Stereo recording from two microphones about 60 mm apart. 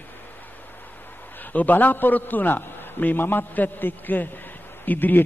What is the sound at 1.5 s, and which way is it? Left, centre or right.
A man's voice, left.